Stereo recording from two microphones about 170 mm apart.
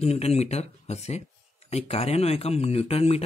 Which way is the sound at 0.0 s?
40° left (ahead or behind).